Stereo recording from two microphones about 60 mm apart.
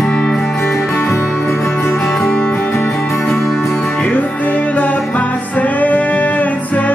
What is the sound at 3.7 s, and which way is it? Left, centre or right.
Music, left.